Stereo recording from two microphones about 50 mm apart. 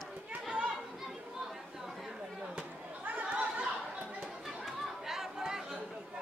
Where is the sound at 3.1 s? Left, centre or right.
Right.